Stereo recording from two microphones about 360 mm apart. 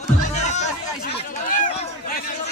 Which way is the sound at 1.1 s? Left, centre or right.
Left.